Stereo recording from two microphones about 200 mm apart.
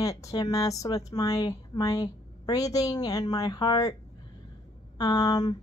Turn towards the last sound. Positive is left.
turn(degrees=20)  # may be behind; listen again after turning